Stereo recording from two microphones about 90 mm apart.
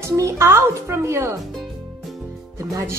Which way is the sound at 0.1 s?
35° right (ahead or behind).